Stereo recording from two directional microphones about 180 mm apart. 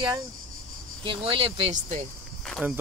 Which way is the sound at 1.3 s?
30° right (ahead or behind).